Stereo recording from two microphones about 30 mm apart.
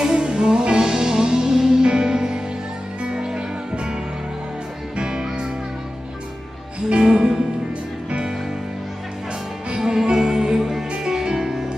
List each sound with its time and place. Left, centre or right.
0.0 s music: right
0.8 s music: centre
7.0 s music: right
9.8 s music: centre